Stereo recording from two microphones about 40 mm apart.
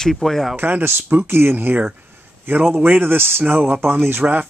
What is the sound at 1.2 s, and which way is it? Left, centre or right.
Speech, right.